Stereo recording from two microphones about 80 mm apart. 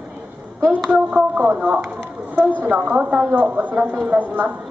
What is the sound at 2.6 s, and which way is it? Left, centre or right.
A woman's voice, right.